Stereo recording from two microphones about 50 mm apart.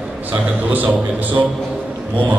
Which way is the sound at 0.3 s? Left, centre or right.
Right.